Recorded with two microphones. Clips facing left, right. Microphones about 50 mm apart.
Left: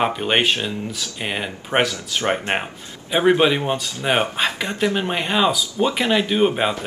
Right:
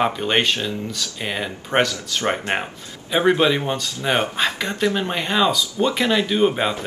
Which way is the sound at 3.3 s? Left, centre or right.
Centre.